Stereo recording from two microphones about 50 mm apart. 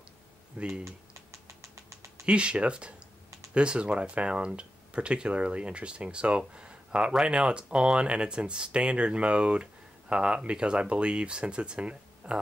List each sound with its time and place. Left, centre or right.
0.6 s speech: centre
2.2 s speech: right